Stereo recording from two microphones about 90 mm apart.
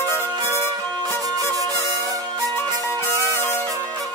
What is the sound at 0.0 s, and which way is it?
Music, 25° left (ahead or behind).